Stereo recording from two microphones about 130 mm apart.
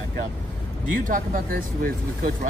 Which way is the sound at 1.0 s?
90° right.